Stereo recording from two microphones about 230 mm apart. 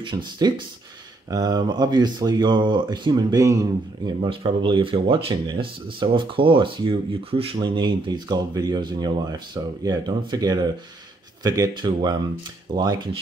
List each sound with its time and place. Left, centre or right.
0.0 s speech: centre